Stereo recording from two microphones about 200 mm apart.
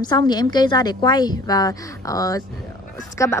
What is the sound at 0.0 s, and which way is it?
A woman's voice, 20° left (ahead or behind).